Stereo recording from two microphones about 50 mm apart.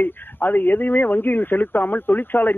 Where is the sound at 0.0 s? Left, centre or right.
Left.